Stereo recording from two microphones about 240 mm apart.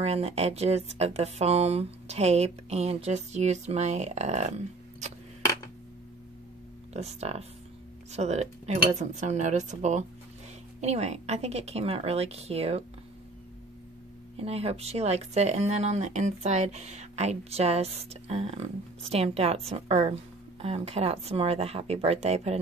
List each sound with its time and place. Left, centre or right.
0.0 s speech: right
6.9 s speech: right
14.3 s speech: right